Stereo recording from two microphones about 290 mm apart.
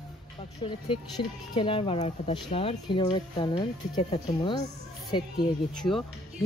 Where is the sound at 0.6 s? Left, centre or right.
Centre.